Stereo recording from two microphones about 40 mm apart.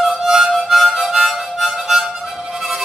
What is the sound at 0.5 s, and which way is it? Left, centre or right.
Harmonica, centre.